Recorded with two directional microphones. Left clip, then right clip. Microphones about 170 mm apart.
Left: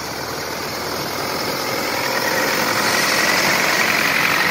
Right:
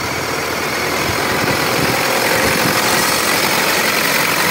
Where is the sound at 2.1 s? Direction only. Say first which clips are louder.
Right 4 dB; 45° right (ahead or behind).